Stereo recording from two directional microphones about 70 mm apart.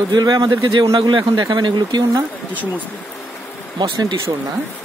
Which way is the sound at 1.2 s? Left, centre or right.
Right.